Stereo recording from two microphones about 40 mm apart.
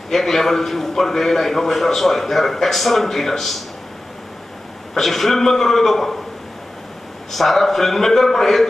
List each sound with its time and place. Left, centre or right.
0.1 s a man's voice: centre
4.9 s a man's voice: centre
7.3 s a man's voice: centre